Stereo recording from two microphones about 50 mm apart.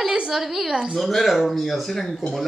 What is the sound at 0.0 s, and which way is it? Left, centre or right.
Speech, centre.